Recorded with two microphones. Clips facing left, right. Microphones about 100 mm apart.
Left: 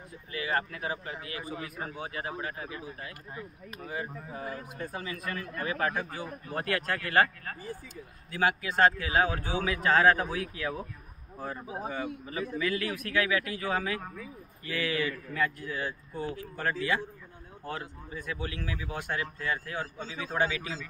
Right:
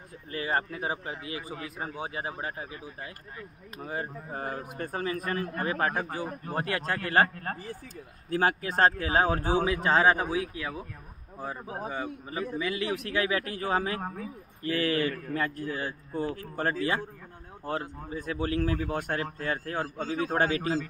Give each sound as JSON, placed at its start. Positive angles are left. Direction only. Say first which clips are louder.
{"t": 0.3, "sound": "a man's voice", "louder": "right 2 dB", "side_deg": -35}
{"t": 3.8, "sound": "a man's voice", "louder": "right 2 dB", "side_deg": -45}
{"t": 9.7, "sound": "a man's voice", "louder": "left 2 dB", "side_deg": -25}
{"t": 10.3, "sound": "speech", "louder": "right 2 dB", "side_deg": -5}
{"t": 12.5, "sound": "a man's voice", "louder": "even", "side_deg": -20}
{"t": 15.3, "sound": "a man's voice", "louder": "right 1 dB", "side_deg": -40}